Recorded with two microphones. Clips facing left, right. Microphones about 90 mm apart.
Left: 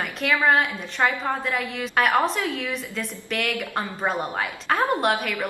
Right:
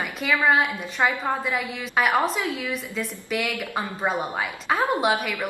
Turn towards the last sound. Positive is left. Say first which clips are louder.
# even
turn(degrees=0)  # may be behind; listen again after turning